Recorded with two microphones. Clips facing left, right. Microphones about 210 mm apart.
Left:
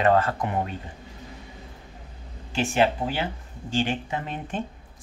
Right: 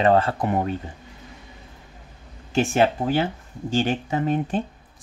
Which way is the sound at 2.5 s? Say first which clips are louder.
Right 3 dB; 45° right (ahead or behind).